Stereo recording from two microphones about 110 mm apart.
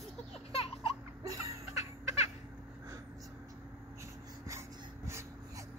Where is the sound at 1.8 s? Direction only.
80° left.